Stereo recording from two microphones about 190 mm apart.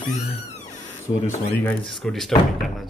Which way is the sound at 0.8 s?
15° left (ahead or behind).